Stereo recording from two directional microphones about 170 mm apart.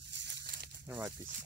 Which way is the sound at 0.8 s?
10° right (ahead or behind).